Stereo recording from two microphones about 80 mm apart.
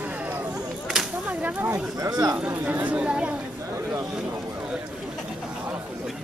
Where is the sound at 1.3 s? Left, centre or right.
Right.